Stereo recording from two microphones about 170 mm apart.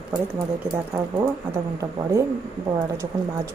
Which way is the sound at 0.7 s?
20° right (ahead or behind).